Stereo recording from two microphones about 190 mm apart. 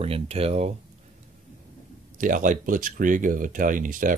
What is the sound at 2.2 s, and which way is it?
Speech, 45° right (ahead or behind).